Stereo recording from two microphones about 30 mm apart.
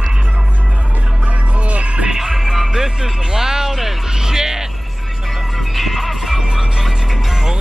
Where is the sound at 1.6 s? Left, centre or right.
Right.